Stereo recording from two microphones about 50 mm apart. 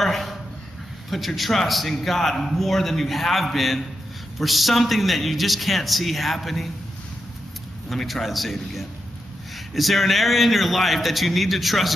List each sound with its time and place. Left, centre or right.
0.0 s a sound: centre
1.1 s a man's voice: centre
7.9 s a man's voice: centre